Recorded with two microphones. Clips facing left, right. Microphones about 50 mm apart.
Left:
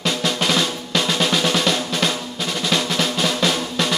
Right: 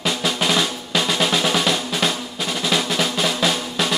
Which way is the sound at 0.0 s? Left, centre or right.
Centre.